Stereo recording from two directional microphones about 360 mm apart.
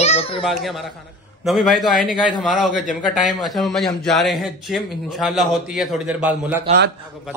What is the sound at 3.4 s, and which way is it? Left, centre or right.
Speech, centre.